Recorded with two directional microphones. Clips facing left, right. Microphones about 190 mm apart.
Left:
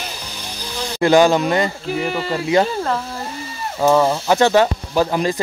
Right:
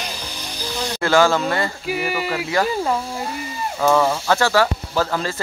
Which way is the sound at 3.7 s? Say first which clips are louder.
Left 3 dB; 15° left (ahead or behind).